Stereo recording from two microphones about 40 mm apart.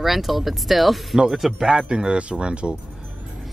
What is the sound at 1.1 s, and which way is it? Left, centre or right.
Speech, centre.